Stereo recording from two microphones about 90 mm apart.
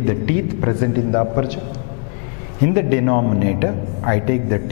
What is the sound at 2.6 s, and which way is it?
A man's voice, 15° left (ahead or behind).